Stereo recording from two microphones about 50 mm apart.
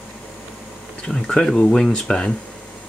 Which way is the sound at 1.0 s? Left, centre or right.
Centre.